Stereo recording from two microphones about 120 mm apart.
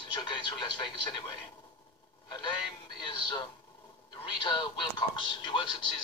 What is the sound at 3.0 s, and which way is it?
A man's voice, 40° left (ahead or behind).